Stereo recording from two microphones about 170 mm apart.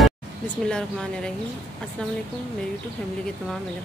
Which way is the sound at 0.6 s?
5° left (ahead or behind).